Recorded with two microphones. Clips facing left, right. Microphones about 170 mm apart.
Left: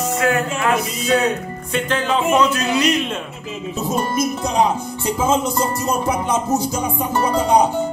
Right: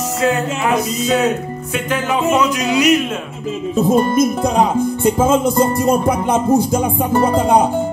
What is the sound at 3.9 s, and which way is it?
Music, 55° right (ahead or behind).